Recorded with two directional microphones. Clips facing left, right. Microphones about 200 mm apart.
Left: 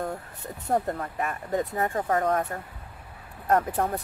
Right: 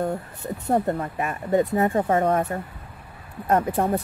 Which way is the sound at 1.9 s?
20° right (ahead or behind).